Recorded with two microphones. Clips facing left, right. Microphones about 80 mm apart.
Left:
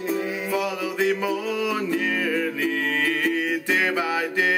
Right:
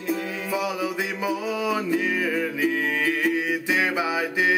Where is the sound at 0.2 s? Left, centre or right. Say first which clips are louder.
Left 3 dB; centre.